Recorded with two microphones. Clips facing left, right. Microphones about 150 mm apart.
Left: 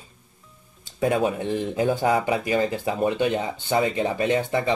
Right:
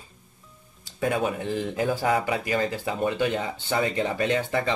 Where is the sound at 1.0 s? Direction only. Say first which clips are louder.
Left 3 dB; 30° left (ahead or behind); by 4.7 s 15° left (ahead or behind).